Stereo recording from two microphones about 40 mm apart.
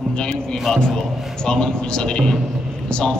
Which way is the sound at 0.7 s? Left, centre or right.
Centre.